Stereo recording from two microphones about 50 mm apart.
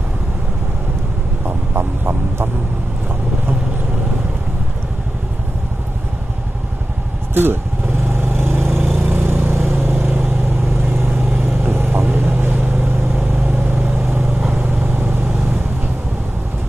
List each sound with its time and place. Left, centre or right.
1.8 s vehicle: right
8.1 s vehicle: right
10.0 s vehicle: right
10.8 s vehicle: right